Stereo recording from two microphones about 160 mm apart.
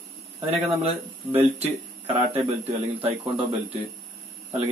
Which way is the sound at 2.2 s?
40° right (ahead or behind).